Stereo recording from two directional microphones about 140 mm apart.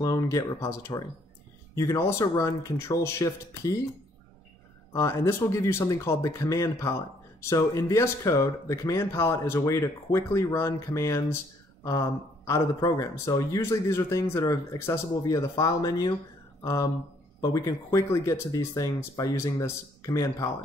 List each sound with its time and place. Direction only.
0.0 s speech: 25° left (ahead or behind)
4.9 s speech: 20° left (ahead or behind)